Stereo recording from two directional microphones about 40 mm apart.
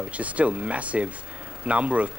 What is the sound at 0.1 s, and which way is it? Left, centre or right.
Speech, right.